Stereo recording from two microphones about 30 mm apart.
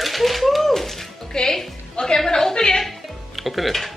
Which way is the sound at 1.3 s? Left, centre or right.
Left.